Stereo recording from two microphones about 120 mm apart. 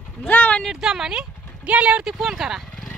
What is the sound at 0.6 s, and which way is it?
Speech, 5° right (ahead or behind).